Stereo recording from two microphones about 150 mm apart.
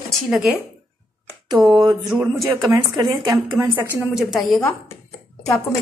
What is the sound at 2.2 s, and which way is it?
Speech, 25° right (ahead or behind).